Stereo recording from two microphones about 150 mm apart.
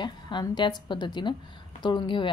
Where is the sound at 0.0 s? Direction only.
30° left (ahead or behind).